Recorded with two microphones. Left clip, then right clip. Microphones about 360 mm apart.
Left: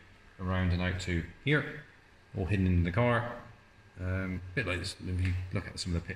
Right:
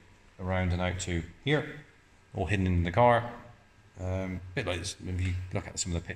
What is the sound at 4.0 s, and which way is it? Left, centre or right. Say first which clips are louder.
Speech: right 3 dB; right.